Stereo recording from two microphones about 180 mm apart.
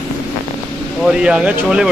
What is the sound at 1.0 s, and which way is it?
Speech, 5° right (ahead or behind).